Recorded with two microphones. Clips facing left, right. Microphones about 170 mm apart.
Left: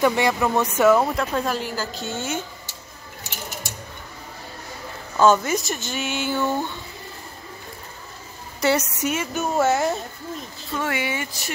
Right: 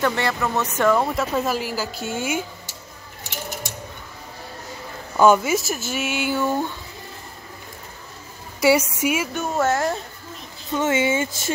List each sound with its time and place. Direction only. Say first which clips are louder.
0.0 s speech: left 3 dB; 15° left (ahead or behind); by 2.4 s 10° right (ahead or behind)
5.2 s speech: right 2 dB; 10° right (ahead or behind)
8.5 s speech: right 4 dB; 10° right (ahead or behind)
9.3 s speech: left 1 dB; 5° left (ahead or behind)
10.7 s speech: right 6 dB; 20° right (ahead or behind)